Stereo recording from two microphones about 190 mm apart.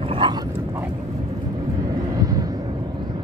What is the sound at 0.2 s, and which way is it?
Dog, 25° right (ahead or behind).